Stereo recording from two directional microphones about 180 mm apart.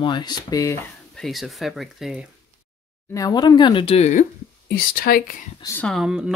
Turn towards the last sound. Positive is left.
turn(degrees=-5)  # may be behind; listen again after turning